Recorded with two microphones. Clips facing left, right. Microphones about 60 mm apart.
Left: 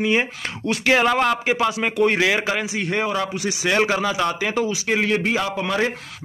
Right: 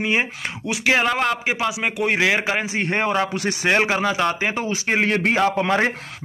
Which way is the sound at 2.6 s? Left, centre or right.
Right.